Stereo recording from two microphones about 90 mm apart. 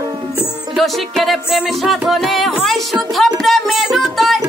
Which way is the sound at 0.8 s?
Centre (ahead or behind).